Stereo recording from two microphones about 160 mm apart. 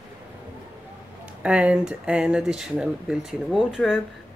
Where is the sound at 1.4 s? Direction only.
5° right (ahead or behind).